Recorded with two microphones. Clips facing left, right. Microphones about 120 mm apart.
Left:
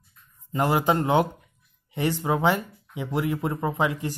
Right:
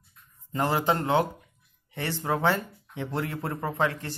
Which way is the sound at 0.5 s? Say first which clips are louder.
Left 3 dB; 15° left (ahead or behind).